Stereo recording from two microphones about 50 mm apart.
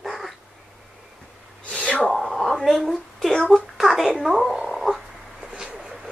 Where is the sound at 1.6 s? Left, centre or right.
Left.